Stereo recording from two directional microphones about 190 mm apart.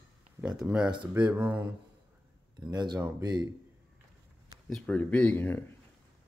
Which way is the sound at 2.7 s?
20° right (ahead or behind).